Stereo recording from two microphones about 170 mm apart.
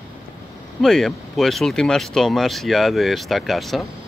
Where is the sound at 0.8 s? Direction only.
Centre (ahead or behind).